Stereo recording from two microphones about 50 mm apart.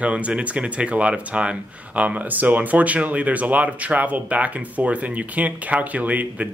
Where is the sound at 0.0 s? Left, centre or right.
Right.